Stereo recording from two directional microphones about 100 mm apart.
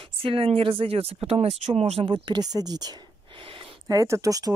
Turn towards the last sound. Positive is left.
turn(degrees=-35)  # may be behind; listen again after turning